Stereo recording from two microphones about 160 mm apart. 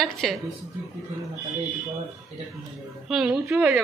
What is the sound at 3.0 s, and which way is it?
Speech, 5° right (ahead or behind).